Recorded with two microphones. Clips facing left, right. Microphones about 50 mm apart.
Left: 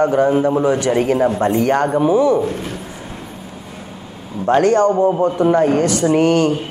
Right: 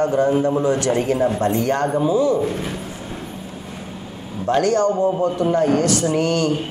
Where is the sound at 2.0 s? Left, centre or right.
Left.